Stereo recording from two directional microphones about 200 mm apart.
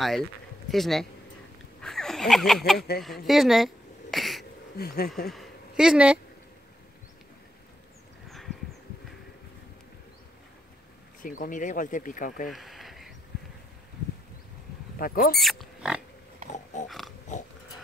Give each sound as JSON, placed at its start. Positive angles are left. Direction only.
{"t": 0.7, "sound": "speech", "side_deg": 0}
{"t": 3.3, "sound": "a sound", "side_deg": 0}
{"t": 4.7, "sound": "speech", "side_deg": 50}
{"t": 5.3, "sound": "a sound", "side_deg": 0}
{"t": 11.2, "sound": "speech", "side_deg": 40}
{"t": 12.4, "sound": "a sound", "side_deg": 0}
{"t": 15.0, "sound": "speech", "side_deg": 45}
{"t": 15.3, "sound": "pig", "side_deg": 0}
{"t": 16.4, "sound": "pig", "side_deg": 40}
{"t": 16.8, "sound": "speech", "side_deg": 0}
{"t": 17.3, "sound": "dog", "side_deg": 35}